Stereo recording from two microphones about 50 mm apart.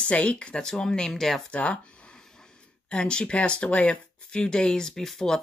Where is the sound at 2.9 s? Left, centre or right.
Centre.